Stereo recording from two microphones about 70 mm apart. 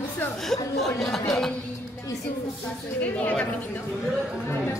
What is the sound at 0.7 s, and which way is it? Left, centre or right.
Speech, centre.